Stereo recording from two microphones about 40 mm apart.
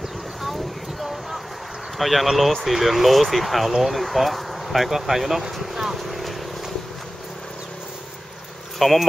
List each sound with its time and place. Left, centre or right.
2.0 s speech: centre
6.0 s vehicle: centre
8.7 s speech: centre